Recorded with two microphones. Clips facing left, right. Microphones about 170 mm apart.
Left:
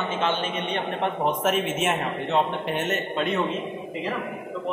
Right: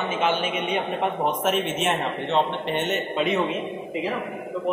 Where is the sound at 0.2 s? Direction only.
10° right (ahead or behind).